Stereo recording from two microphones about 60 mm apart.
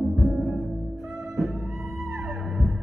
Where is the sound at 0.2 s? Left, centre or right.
Centre.